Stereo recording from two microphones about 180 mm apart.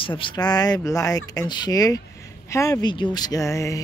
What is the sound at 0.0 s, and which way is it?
Speech, 30° left (ahead or behind).